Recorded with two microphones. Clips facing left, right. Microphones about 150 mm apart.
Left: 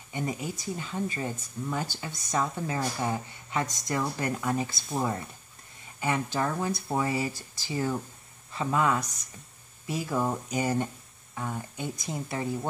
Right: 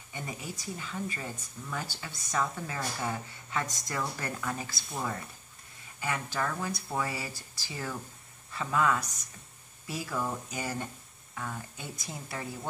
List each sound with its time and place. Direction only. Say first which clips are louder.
0.1 s speech: left 7 dB; 20° left (ahead or behind)
5.9 s speech: left 5 dB; 25° left (ahead or behind)